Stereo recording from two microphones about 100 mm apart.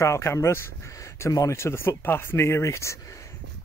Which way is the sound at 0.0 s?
30° left (ahead or behind).